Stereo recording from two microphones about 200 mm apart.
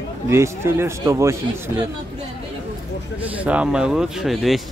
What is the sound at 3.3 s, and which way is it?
A man's voice, 5° right (ahead or behind).